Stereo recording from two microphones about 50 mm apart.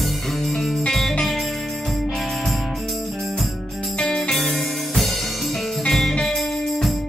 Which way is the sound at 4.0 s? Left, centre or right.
Centre.